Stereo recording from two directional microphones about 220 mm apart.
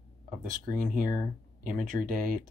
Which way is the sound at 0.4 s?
40° right (ahead or behind).